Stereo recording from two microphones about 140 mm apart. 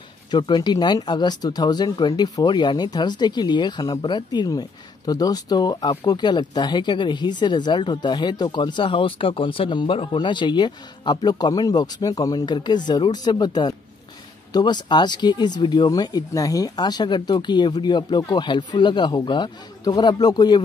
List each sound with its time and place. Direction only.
0.3 s speech: 30° left (ahead or behind)